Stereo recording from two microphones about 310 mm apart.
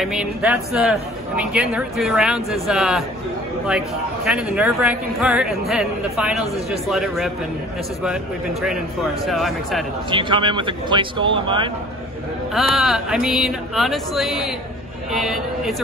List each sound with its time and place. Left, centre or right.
0.0 s a man's voice: centre
9.2 s a man's voice: centre
10.1 s speech: centre
12.5 s a man's voice: centre